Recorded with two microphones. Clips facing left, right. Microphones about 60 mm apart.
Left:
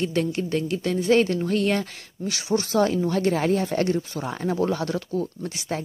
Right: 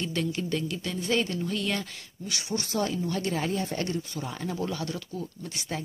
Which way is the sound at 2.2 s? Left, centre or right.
Left.